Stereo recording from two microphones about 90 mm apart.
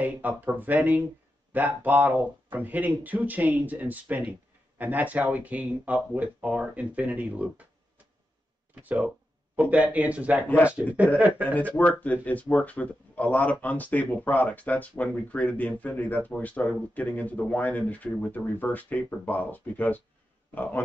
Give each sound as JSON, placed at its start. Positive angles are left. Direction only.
{"t": 0.0, "sound": "speech", "side_deg": -20}
{"t": 8.8, "sound": "speech", "side_deg": -15}
{"t": 11.5, "sound": "speech", "side_deg": 15}